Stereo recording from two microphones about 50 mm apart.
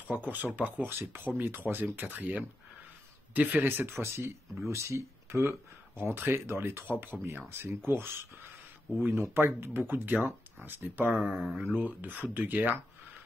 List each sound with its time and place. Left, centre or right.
0.0 s speech: right
0.8 s speech: right
4.0 s speech: right
4.6 s speech: right
5.9 s speech: right
7.3 s speech: right
11.2 s mantra: centre
11.6 s speech: right